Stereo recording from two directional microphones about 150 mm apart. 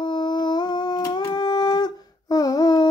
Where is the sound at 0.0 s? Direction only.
30° left (ahead or behind).